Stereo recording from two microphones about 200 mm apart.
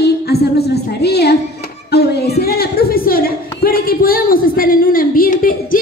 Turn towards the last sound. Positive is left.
turn(degrees=45)  # may be behind; listen again after turning